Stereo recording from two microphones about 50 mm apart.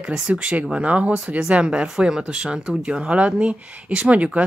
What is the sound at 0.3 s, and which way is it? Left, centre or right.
Speech, right.